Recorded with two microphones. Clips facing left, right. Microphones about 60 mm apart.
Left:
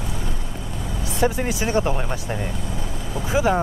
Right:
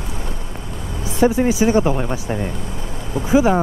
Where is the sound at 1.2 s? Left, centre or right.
Centre.